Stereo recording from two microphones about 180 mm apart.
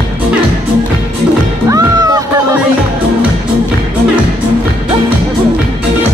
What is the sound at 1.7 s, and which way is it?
Music, 20° right (ahead or behind).